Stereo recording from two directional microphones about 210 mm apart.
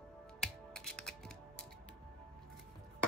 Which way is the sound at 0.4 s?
5° left (ahead or behind).